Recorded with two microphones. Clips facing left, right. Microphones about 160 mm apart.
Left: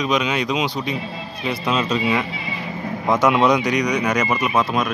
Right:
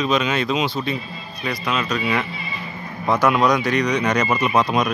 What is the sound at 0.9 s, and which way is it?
Speech, 75° left (ahead or behind).